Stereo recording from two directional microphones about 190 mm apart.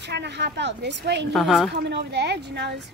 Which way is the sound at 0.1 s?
65° right (ahead or behind).